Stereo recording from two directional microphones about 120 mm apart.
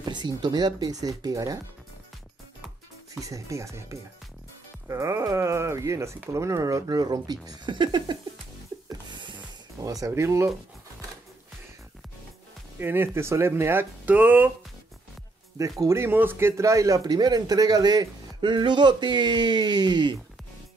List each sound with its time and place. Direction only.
0.1 s a man's voice: 40° right (ahead or behind)
3.2 s speech: 25° right (ahead or behind)
8.8 s music: 40° right (ahead or behind)
9.8 s speech: 30° right (ahead or behind)
12.7 s speech: 20° right (ahead or behind)
15.8 s a man's voice: 20° right (ahead or behind); by 20.2 s 35° right (ahead or behind)